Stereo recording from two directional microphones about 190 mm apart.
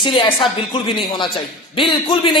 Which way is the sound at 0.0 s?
25° left (ahead or behind).